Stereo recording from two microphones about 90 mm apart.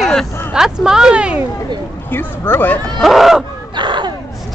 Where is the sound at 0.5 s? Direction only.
5° right (ahead or behind).